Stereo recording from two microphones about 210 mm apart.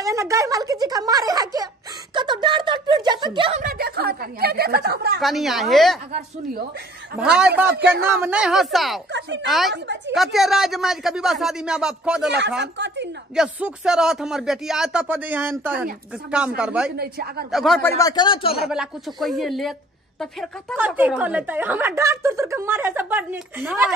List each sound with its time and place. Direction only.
0.0 s speech: 15° right (ahead or behind)
3.6 s a woman's voice: 45° right (ahead or behind)
5.2 s speech: centre (ahead or behind)
7.3 s a woman's voice: 5° right (ahead or behind)
9.1 s speech: 55° right (ahead or behind)
9.5 s speech: centre (ahead or behind)
12.3 s speech: 55° right (ahead or behind)
13.4 s speech: 5° right (ahead or behind)
16.9 s a woman's voice: 50° right (ahead or behind)
17.5 s speech: centre (ahead or behind)
17.8 s speech: 15° left (ahead or behind)
18.6 s speech: centre (ahead or behind)
20.7 s a woman's voice: 10° right (ahead or behind)